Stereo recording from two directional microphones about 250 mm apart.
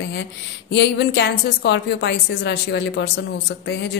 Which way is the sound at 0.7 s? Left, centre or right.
Left.